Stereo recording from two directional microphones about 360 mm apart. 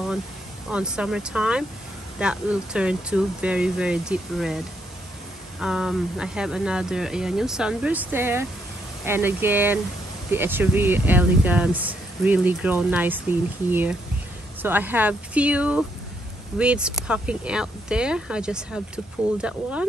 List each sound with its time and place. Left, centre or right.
0.7 s speech: centre
5.6 s speech: centre